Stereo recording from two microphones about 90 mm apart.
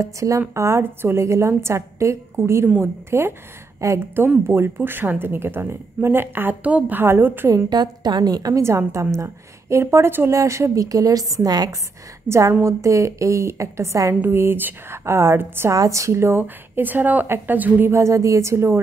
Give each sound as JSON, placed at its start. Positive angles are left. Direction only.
{"t": 0.0, "sound": "a woman's voice", "side_deg": -35}
{"t": 7.7, "sound": "a woman's voice", "side_deg": -50}
{"t": 8.6, "sound": "a woman's voice", "side_deg": -35}
{"t": 12.3, "sound": "a woman's voice", "side_deg": -35}